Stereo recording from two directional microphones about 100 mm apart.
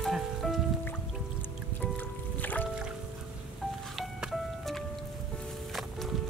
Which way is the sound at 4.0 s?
5° right (ahead or behind).